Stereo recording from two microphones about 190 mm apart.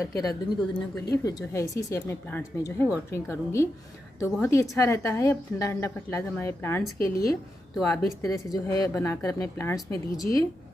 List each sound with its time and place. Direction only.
0.1 s a woman's voice: 20° left (ahead or behind)